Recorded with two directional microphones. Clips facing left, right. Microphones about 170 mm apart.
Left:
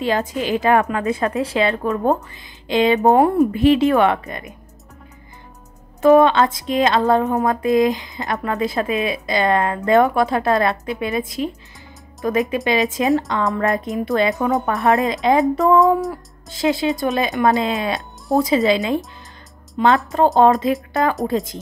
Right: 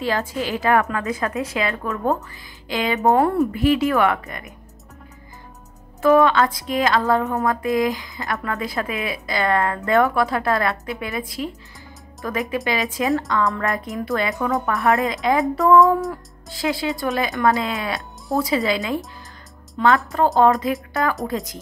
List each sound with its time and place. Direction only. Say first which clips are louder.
0.0 s speech: left 3 dB; 20° left (ahead or behind)
3.5 s speech: left 4 dB; 25° left (ahead or behind)
6.0 s speech: left 3 dB; 25° left (ahead or behind)
20.1 s speech: left 3 dB; 20° left (ahead or behind)